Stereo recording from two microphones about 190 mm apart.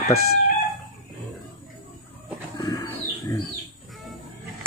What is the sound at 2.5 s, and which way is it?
Pigeon, 20° left (ahead or behind).